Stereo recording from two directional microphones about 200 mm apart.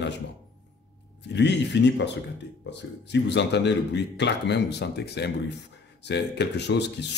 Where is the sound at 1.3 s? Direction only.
60° left (ahead or behind).